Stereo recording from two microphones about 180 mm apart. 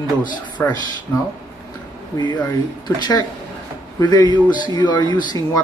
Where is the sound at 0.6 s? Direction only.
10° left (ahead or behind).